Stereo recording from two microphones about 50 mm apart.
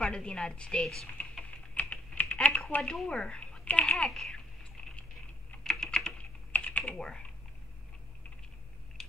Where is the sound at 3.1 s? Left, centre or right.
Left.